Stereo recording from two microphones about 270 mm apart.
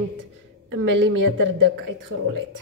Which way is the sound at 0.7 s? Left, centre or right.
Right.